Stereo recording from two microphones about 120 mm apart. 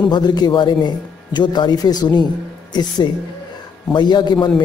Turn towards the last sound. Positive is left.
turn(degrees=40)  # may be behind; listen again after turning